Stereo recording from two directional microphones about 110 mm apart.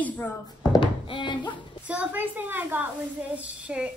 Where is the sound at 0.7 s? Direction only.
50° left (ahead or behind).